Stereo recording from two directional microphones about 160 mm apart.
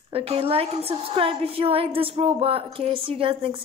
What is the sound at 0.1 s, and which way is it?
A woman's voice, 40° right (ahead or behind).